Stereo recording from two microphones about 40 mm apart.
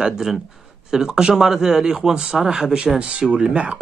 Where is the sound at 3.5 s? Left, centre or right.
Right.